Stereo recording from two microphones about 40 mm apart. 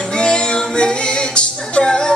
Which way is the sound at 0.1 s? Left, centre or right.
Left.